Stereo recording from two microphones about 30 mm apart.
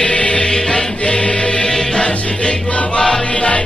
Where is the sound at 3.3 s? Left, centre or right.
Left.